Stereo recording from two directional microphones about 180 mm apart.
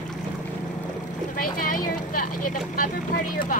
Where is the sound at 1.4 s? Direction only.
50° left (ahead or behind).